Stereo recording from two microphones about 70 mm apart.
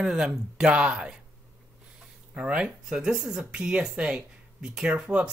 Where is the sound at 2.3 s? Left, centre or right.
Centre.